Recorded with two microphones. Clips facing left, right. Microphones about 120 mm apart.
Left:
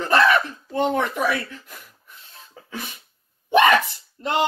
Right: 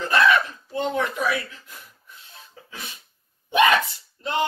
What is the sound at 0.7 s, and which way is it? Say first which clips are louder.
Speech: left 3 dB; 50° left (ahead or behind).